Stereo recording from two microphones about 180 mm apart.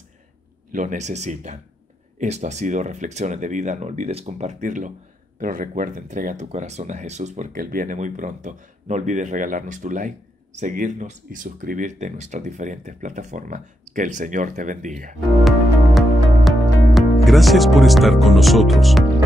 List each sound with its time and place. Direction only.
0.7 s speech: 45° right (ahead or behind)
15.3 s music: centre (ahead or behind)